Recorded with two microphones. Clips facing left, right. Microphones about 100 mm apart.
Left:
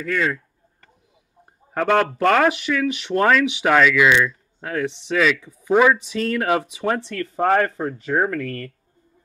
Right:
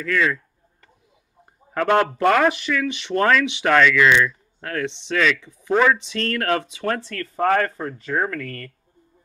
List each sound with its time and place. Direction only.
1.7 s speech: centre (ahead or behind); by 8.7 s 20° left (ahead or behind)